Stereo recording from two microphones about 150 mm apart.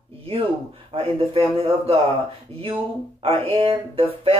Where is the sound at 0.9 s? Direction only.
40° right (ahead or behind).